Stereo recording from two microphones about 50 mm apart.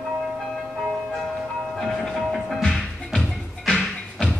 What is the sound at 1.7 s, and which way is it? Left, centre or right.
Music, centre.